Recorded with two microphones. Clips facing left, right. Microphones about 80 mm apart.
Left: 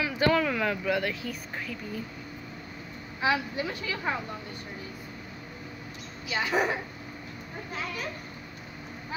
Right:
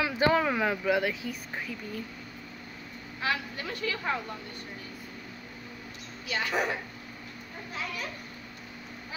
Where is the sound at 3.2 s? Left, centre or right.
Centre.